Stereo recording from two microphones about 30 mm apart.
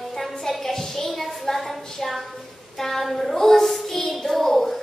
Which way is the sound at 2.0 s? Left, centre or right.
Centre.